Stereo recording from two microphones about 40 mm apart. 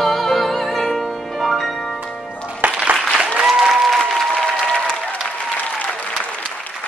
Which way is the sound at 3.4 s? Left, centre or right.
Centre.